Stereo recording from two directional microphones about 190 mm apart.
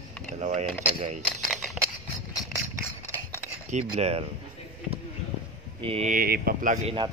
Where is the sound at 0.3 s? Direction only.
35° right (ahead or behind).